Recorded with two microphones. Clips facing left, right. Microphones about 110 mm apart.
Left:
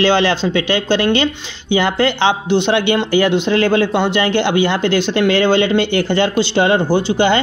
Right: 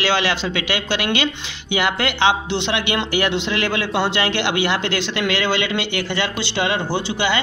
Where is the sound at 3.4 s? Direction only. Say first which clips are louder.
Left 8 dB; 40° left (ahead or behind).